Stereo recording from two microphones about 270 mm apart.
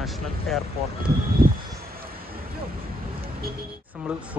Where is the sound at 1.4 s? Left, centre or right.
Right.